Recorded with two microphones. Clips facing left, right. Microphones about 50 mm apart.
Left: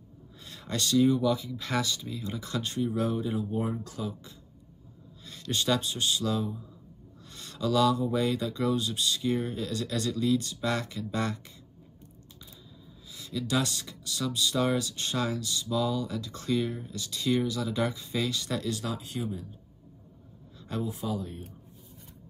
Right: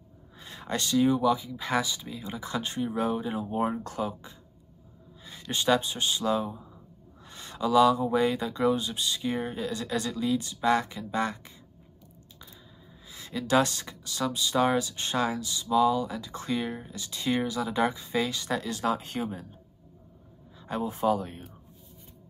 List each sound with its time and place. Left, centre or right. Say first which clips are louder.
0.4 s speech: right 1 dB; right
13.1 s speech: right 5 dB; right
20.6 s speech: right 6 dB; right